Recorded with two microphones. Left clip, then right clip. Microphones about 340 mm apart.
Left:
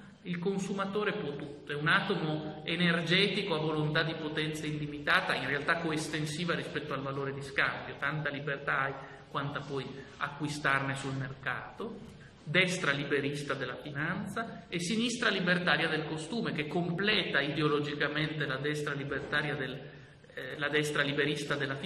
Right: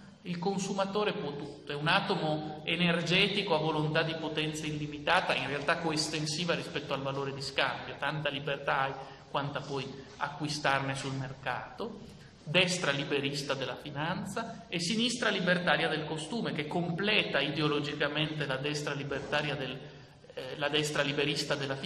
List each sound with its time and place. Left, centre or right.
0.3 s a man's voice: centre
2.6 s a man's voice: centre
12.5 s a man's voice: centre